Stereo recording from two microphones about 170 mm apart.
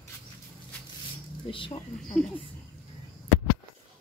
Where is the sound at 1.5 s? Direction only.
30° left (ahead or behind).